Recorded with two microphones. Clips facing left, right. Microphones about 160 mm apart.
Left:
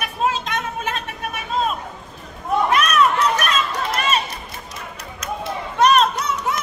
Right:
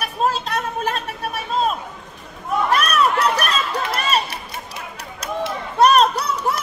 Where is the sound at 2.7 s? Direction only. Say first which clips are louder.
Even; 35° right (ahead or behind).